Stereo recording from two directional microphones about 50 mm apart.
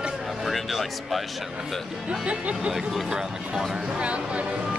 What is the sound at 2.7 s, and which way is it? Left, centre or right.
Speech, centre.